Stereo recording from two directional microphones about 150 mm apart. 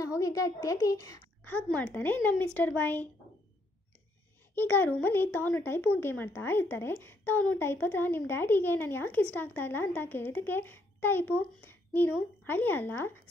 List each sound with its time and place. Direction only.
0.0 s a woman's voice: 20° left (ahead or behind)
1.4 s speech: 10° left (ahead or behind)
4.6 s speech: 10° left (ahead or behind)